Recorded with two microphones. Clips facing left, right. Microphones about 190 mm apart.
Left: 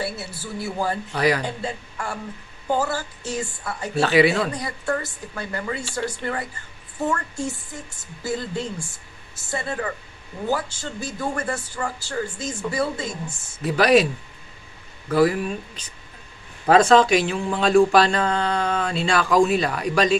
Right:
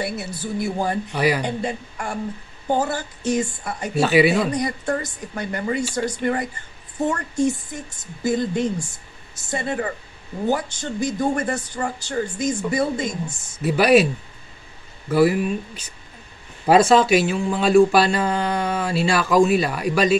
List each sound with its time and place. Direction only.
0.0 s a woman's voice: 15° right (ahead or behind)
13.6 s a woman's voice: 5° right (ahead or behind)
15.0 s a woman's voice: 5° right (ahead or behind)